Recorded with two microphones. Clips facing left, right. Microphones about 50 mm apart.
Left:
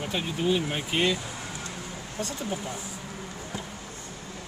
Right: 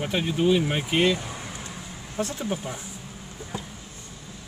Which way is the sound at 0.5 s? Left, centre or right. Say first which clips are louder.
Right 4 dB; right.